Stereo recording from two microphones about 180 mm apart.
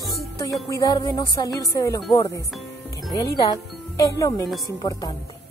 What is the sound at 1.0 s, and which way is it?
Speech, 20° left (ahead or behind).